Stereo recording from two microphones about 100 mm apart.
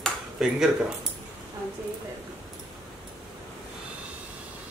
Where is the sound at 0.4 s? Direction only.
5° right (ahead or behind).